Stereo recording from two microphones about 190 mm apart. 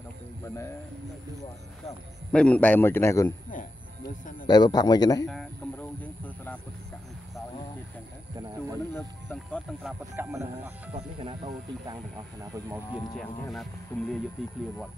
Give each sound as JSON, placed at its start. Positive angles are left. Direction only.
{"t": 2.3, "sound": "a man's voice", "side_deg": 5}
{"t": 4.5, "sound": "a man's voice", "side_deg": 20}
{"t": 5.2, "sound": "a sound", "side_deg": 0}
{"t": 8.9, "sound": "speech", "side_deg": 10}
{"t": 10.1, "sound": "speech", "side_deg": -10}
{"t": 10.9, "sound": "speech", "side_deg": -30}
{"t": 13.2, "sound": "speech", "side_deg": 5}